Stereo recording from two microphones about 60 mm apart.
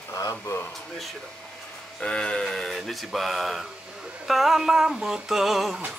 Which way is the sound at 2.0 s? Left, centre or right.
Centre.